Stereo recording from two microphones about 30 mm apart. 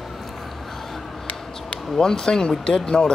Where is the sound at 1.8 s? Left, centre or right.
Centre.